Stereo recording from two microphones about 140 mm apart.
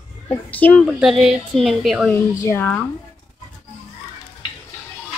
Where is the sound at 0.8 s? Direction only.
Centre (ahead or behind).